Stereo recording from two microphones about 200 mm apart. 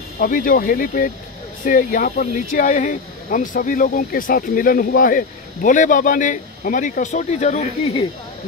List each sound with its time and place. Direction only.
0.2 s speech: 45° left (ahead or behind)